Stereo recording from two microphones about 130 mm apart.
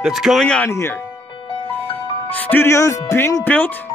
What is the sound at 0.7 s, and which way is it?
Speech, 20° left (ahead or behind).